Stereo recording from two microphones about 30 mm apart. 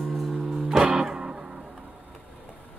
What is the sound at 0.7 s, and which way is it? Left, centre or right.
Music, centre.